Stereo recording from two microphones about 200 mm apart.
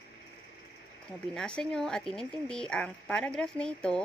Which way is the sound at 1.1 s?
5° left (ahead or behind).